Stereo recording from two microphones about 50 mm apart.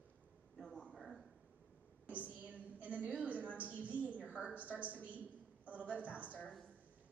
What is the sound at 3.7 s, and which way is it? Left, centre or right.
A woman's voice, right.